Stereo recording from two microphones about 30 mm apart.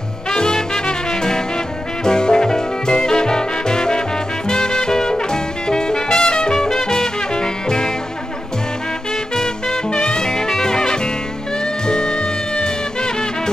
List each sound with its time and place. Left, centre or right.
0.3 s music: left
2.0 s music: left
9.3 s music: left
9.8 s music: left
10.2 s music: left